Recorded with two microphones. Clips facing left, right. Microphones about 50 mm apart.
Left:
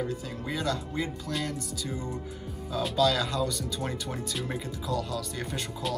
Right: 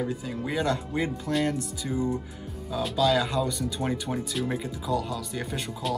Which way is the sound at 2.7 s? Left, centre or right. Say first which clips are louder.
Right 2 dB; centre.